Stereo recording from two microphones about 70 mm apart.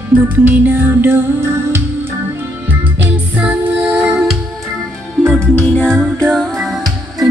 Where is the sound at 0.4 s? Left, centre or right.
Right.